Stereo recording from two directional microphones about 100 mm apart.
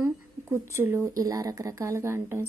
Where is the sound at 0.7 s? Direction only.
25° right (ahead or behind).